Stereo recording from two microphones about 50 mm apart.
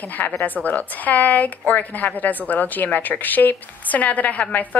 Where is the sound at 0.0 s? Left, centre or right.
Left.